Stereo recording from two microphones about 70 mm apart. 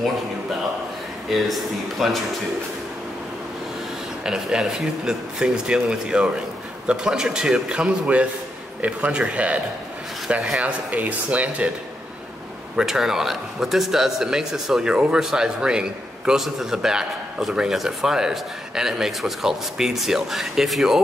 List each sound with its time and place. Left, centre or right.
1.3 s speech: centre
4.2 s a man's voice: centre
10.6 s speech: right
12.7 s a man's voice: centre